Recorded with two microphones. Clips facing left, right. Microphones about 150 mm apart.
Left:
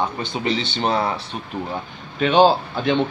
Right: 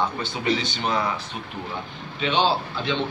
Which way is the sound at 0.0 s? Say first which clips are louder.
Left 2 dB; 20° left (ahead or behind).